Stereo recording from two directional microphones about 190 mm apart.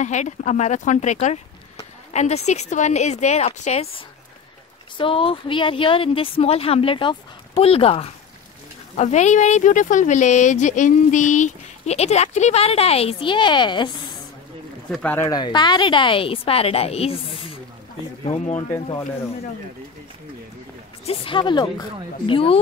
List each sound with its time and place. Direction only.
0.0 s speech: 40° left (ahead or behind)
4.9 s speech: 30° left (ahead or behind)
14.9 s speech: 5° left (ahead or behind); by 18.7 s 35° left (ahead or behind)
21.0 s speech: 30° left (ahead or behind)